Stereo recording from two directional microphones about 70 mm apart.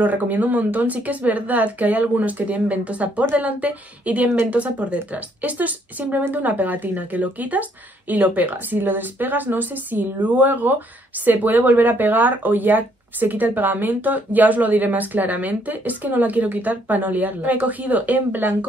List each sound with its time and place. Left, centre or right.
0.0 s speech: right